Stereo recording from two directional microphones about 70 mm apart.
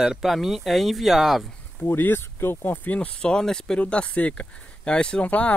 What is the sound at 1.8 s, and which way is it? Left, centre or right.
Speech, left.